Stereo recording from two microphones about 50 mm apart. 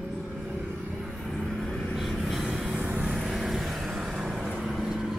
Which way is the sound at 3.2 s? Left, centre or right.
Centre.